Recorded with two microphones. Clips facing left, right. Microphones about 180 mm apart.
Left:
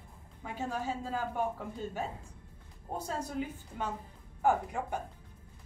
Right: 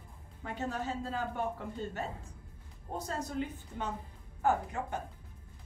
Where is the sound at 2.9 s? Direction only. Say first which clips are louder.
Even; 10° left (ahead or behind).